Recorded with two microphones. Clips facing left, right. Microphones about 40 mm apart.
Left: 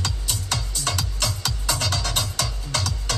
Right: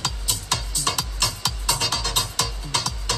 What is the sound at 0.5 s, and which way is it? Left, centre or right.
Music, right.